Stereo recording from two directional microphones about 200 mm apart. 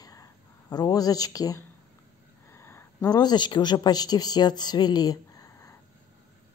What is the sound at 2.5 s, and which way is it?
A man's voice, 15° left (ahead or behind).